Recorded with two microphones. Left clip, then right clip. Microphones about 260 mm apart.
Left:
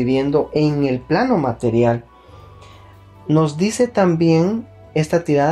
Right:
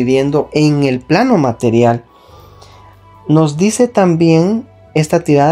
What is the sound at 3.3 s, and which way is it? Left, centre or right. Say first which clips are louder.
Speech: right 5 dB; right.